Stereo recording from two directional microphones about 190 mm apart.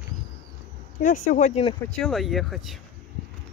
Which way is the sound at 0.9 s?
45° left (ahead or behind).